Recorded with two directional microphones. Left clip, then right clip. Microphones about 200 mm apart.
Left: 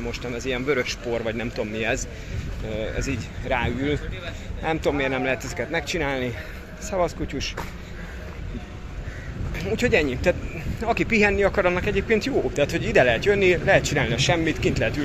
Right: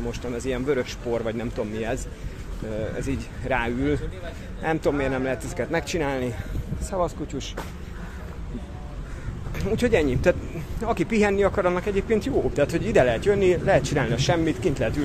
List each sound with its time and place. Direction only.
0.0 s speech: 10° right (ahead or behind)
5.7 s speech: 20° right (ahead or behind)
6.0 s speech: 5° right (ahead or behind)
9.6 s speech: 10° right (ahead or behind)
12.5 s speech: 10° right (ahead or behind)